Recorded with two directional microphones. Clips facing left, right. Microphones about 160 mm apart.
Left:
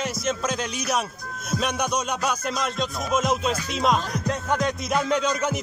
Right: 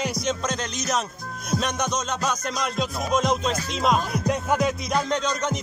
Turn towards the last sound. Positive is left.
turn(degrees=5)  # may be behind; listen again after turning